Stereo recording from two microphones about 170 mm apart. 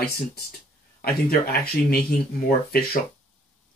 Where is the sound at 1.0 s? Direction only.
65° left (ahead or behind).